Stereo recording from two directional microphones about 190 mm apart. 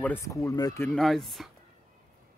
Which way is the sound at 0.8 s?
Centre (ahead or behind).